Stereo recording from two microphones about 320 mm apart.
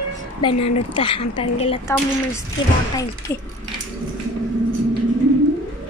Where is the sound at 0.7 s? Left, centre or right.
Centre.